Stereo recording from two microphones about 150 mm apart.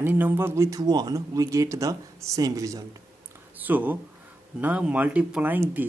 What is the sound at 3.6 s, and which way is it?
Speech, 10° right (ahead or behind).